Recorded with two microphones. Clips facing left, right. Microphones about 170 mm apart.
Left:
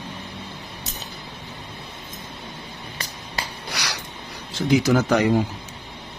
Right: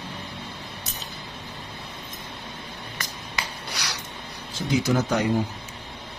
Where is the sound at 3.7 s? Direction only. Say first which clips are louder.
Left 5 dB; 75° left (ahead or behind).